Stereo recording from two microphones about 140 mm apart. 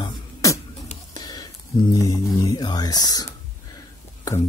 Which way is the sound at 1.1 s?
30° left (ahead or behind).